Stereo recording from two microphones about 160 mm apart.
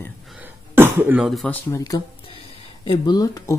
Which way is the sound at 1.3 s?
Centre (ahead or behind).